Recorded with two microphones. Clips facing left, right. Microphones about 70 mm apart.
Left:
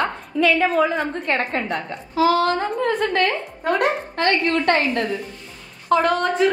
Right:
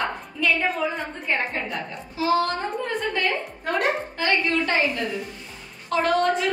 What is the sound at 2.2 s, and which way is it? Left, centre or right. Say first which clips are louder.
Speech: left 5 dB; left.